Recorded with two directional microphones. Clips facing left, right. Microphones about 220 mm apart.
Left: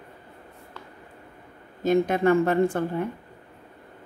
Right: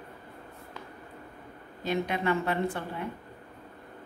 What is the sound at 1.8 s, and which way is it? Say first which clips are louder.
A woman's voice: left 8 dB; 45° left (ahead or behind).